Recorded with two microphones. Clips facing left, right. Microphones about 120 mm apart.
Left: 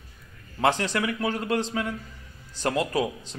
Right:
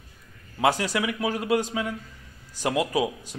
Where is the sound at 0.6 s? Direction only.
10° right (ahead or behind).